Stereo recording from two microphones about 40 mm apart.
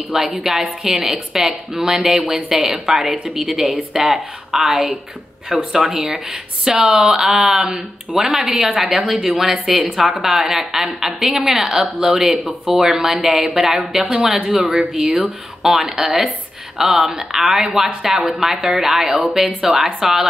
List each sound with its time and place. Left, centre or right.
0.1 s a woman's voice: centre
8.1 s a woman's voice: centre
9.9 s a woman's voice: centre
10.2 s a woman's voice: centre